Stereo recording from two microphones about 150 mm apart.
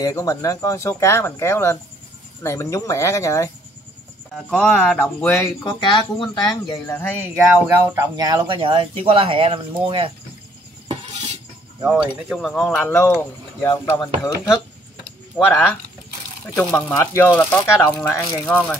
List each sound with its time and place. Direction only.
0.0 s speech: 25° left (ahead or behind)
4.3 s speech: 5° left (ahead or behind)
5.3 s speech: 20° left (ahead or behind)
5.8 s speech: 30° left (ahead or behind)
6.7 s speech: 15° left (ahead or behind)
7.3 s speech: 10° right (ahead or behind); by 10.1 s 35° right (ahead or behind)
12.0 s speech: 5° right (ahead or behind)